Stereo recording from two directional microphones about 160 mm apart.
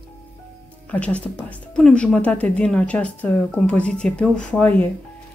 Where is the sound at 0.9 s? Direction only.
10° left (ahead or behind).